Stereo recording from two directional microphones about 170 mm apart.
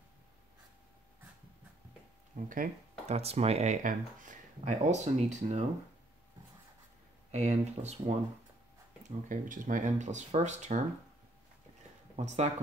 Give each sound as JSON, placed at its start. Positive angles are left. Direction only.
{"t": 2.3, "sound": "speech", "side_deg": -50}
{"t": 3.2, "sound": "speech", "side_deg": -35}
{"t": 7.2, "sound": "speech", "side_deg": -40}